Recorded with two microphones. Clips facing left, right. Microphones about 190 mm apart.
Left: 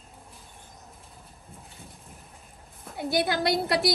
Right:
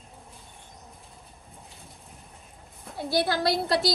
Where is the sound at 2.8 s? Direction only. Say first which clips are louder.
Left 2 dB; centre (ahead or behind).